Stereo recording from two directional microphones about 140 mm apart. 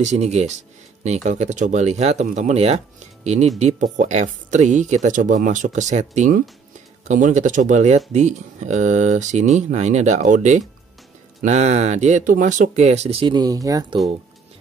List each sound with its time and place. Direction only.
0.0 s speech: 55° right (ahead or behind); by 13.8 s 25° right (ahead or behind)